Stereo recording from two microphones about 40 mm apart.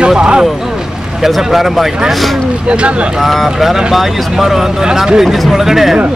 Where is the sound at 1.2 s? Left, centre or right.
Centre.